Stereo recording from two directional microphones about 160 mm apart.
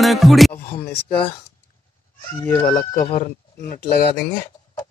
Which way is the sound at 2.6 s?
60° left (ahead or behind).